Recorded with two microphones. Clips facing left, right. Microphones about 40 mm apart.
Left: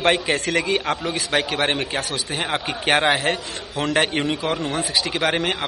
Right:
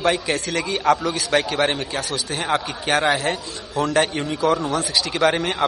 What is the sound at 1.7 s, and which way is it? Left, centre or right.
Speech, left.